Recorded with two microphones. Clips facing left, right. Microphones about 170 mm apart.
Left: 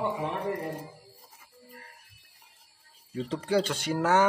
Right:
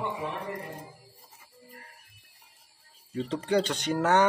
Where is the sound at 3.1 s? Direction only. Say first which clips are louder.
Right 1 dB; 5° left (ahead or behind).